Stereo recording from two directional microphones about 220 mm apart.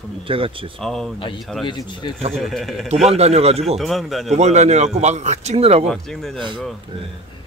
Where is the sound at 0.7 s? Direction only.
Centre (ahead or behind).